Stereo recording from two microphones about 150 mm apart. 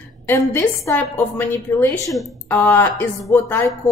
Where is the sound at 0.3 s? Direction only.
15° left (ahead or behind).